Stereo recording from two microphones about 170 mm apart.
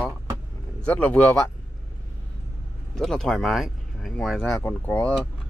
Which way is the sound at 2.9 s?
5° left (ahead or behind).